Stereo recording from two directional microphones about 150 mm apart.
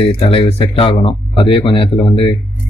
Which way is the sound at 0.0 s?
40° left (ahead or behind).